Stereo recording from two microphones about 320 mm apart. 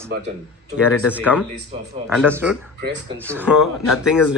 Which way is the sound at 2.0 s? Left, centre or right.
Centre.